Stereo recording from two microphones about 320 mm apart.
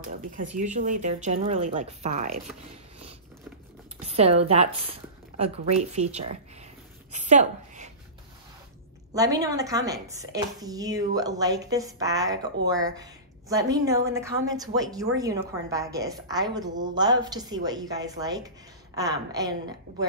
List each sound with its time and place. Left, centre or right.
0.3 s speech: right
4.1 s a woman's voice: centre
9.1 s a woman's voice: centre